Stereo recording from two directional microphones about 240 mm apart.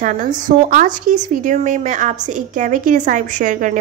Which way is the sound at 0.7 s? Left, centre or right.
Right.